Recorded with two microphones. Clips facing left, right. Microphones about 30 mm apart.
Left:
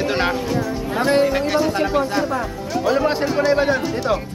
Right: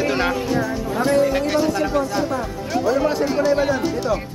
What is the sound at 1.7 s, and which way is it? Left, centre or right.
Speech, left.